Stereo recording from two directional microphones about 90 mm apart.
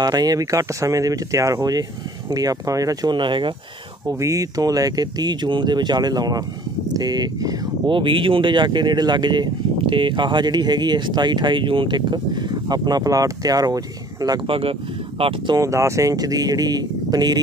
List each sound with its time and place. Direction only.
0.0 s speech: 45° right (ahead or behind); by 3.5 s 65° right (ahead or behind)
4.1 s speech: 35° right (ahead or behind)
7.9 s speech: 70° right (ahead or behind); by 13.7 s 45° right (ahead or behind)
14.5 s speech: 90° right
15.5 s speech: 35° right (ahead or behind)